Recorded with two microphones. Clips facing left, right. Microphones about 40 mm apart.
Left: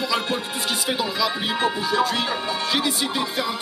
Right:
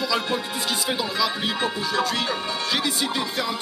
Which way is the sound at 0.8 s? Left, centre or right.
Centre.